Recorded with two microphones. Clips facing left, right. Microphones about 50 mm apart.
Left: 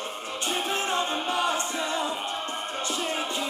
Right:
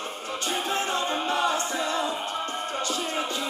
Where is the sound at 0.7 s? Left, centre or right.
Left.